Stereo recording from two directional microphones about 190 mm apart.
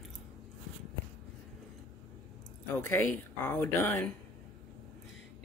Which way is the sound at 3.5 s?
10° left (ahead or behind).